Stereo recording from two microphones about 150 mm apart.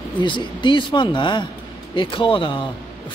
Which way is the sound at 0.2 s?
35° left (ahead or behind).